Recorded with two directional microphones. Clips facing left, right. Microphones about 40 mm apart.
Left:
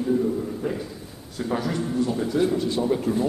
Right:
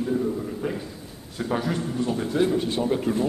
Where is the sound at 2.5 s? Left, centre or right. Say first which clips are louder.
Left 1 dB; right.